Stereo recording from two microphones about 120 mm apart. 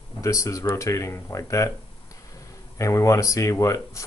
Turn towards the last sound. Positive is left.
turn(degrees=25)  # may be behind; listen again after turning